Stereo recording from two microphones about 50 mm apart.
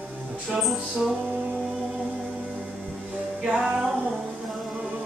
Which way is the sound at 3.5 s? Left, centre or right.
Centre.